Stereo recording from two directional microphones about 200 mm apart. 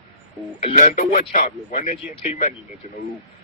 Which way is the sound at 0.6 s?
35° left (ahead or behind).